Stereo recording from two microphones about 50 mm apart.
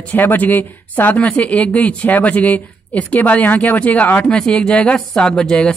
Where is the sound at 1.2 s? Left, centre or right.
Left.